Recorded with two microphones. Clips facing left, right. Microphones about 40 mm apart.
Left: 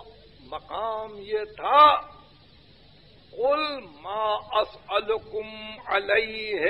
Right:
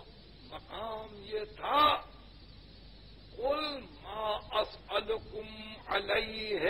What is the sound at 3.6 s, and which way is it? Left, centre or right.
A man's voice, left.